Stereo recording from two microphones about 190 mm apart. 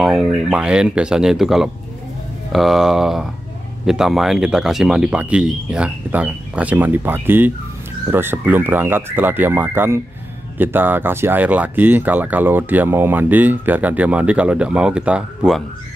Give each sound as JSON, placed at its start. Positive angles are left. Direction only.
{"t": 0.0, "sound": "speech", "side_deg": 0}